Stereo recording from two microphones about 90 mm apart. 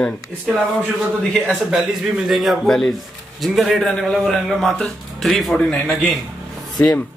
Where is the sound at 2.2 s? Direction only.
Centre (ahead or behind).